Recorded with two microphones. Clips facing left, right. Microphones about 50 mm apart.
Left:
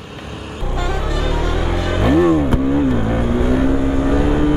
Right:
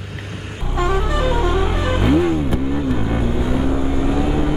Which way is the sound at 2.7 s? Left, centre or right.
Centre.